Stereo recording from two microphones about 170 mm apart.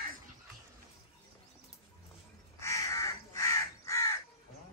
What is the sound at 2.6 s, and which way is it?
Crow, 20° left (ahead or behind).